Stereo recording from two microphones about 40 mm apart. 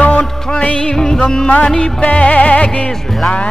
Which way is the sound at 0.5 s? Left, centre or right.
Left.